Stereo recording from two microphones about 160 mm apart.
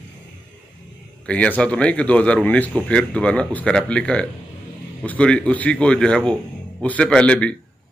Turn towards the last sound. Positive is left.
turn(degrees=5)  # may be behind; listen again after turning